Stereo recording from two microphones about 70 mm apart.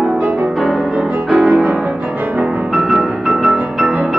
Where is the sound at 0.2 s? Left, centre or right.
Centre.